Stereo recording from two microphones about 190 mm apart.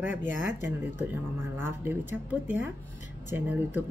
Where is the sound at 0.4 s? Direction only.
10° right (ahead or behind).